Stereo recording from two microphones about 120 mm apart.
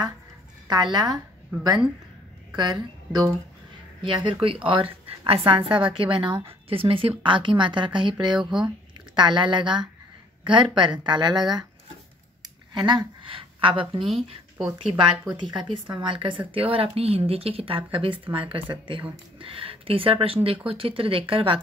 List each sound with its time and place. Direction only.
0.7 s a woman's voice: 35° right (ahead or behind)
4.0 s a woman's voice: 45° right (ahead or behind)
8.4 s speech: 5° right (ahead or behind)
8.6 s speech: 40° right (ahead or behind)
12.7 s a woman's voice: 40° right (ahead or behind)
15.3 s a woman's voice: 40° right (ahead or behind)